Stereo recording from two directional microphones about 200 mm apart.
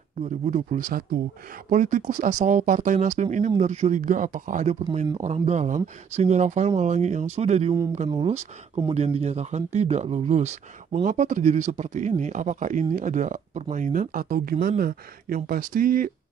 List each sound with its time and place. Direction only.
0.2 s speech: 40° right (ahead or behind)